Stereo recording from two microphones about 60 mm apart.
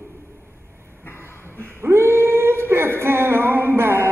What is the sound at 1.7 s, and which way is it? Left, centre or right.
Female singing, right.